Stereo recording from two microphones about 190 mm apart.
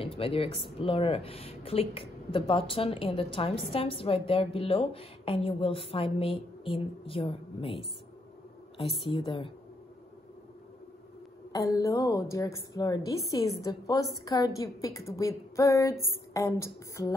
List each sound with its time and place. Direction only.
0.0 s a sound: 30° left (ahead or behind)
0.6 s a woman's voice: 30° left (ahead or behind)
8.8 s a woman's voice: centre (ahead or behind)
9.1 s a woman's voice: 25° left (ahead or behind)
11.5 s a woman's voice: 15° left (ahead or behind)